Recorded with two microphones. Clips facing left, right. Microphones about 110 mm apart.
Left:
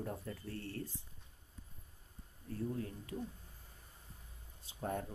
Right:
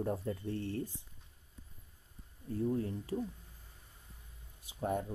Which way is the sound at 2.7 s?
30° right (ahead or behind).